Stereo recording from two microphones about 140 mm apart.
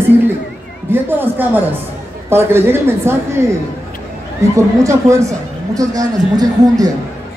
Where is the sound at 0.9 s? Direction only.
15° right (ahead or behind).